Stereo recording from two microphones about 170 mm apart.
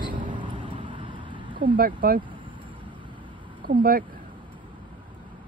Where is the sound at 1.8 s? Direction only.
55° right (ahead or behind).